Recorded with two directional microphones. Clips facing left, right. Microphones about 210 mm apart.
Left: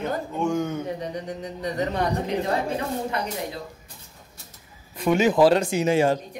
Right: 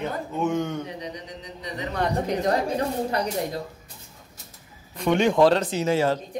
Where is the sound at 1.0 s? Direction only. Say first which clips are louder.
Left 5 dB; 50° left (ahead or behind).